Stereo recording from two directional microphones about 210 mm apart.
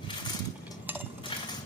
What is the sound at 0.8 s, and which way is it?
Chink, 10° right (ahead or behind).